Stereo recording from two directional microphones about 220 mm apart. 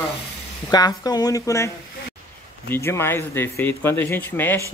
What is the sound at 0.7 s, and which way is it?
Speech, 15° left (ahead or behind).